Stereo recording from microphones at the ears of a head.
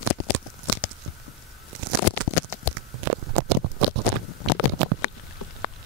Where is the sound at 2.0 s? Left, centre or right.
Left.